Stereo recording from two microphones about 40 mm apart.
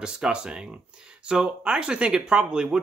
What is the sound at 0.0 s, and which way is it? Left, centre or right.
Speech, right.